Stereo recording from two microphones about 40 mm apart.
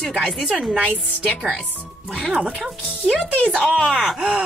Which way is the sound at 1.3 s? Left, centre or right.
Centre.